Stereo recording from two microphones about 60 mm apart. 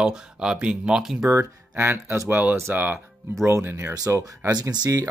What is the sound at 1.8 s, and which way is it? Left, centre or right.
Speech, right.